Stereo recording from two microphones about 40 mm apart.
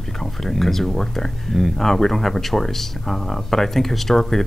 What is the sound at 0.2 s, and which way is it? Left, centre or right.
Speech, centre.